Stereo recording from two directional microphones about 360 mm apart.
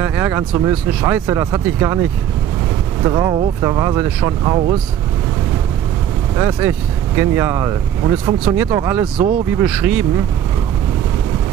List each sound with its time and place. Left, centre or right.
0.0 s speech: centre
3.1 s speech: centre
6.3 s speech: centre